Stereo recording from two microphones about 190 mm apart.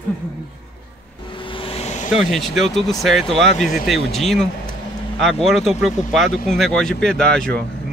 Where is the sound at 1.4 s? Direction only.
30° left (ahead or behind).